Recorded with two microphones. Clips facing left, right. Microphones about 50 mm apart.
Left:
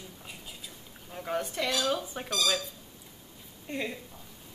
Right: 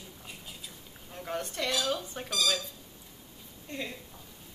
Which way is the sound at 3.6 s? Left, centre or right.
Centre.